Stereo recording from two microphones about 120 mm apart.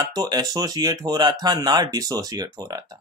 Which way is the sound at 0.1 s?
30° right (ahead or behind).